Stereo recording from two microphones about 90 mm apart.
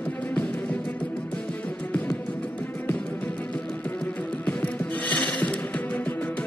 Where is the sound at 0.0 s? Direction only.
15° left (ahead or behind).